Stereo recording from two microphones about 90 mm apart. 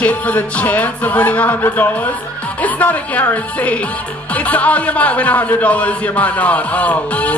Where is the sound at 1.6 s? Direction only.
25° left (ahead or behind).